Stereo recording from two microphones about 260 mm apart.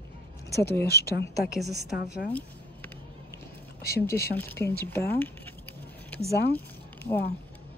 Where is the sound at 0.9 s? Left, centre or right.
Left.